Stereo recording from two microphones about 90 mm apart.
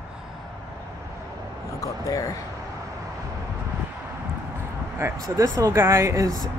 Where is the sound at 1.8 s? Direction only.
40° left (ahead or behind).